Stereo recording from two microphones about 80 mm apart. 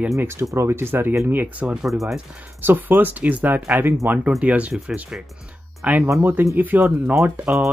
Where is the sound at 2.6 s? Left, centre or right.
Right.